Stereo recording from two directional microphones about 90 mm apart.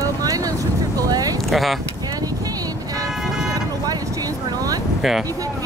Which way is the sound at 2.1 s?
45° right (ahead or behind).